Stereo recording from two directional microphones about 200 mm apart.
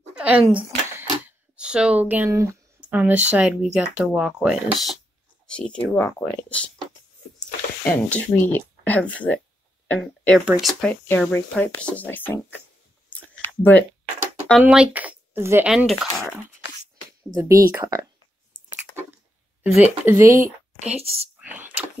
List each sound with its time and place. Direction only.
0.2 s speech: 5° right (ahead or behind)
1.6 s speech: 5° right (ahead or behind)
7.8 s speech: 10° left (ahead or behind)
13.1 s chewing: 10° left (ahead or behind)
14.6 s speech: 5° right (ahead or behind)
17.4 s speech: 15° right (ahead or behind)
18.5 s chewing: 40° right (ahead or behind)
19.6 s a woman's voice: 10° right (ahead or behind)